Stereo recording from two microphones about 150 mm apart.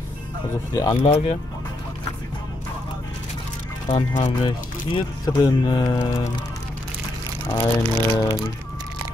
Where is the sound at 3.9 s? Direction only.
55° left (ahead or behind).